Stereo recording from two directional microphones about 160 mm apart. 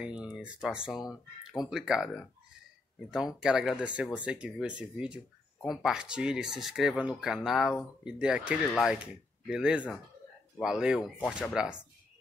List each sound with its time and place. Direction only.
0.0 s speech: 5° right (ahead or behind)